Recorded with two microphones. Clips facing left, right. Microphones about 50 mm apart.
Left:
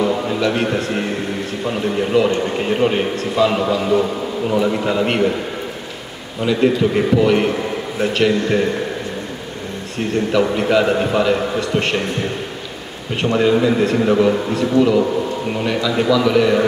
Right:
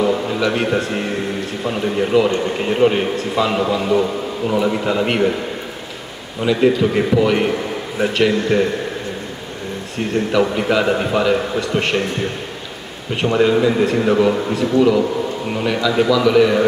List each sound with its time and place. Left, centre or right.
0.4 s a man's voice: centre
6.4 s a man's voice: centre
10.1 s a man's voice: centre
13.1 s a man's voice: centre